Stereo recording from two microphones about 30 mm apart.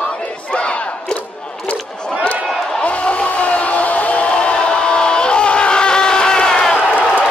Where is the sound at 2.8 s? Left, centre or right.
Left.